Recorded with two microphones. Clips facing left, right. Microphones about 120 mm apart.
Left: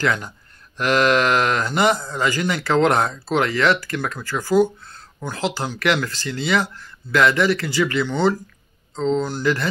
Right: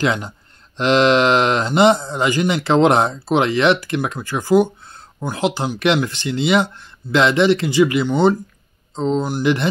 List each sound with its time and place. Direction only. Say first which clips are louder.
0.0 s speech: right 2 dB; 20° right (ahead or behind)